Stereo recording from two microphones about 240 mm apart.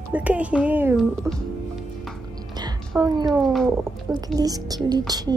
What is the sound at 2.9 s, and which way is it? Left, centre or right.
A woman's voice, centre.